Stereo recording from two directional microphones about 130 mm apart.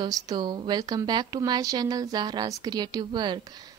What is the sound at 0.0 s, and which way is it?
A woman's voice, 30° right (ahead or behind).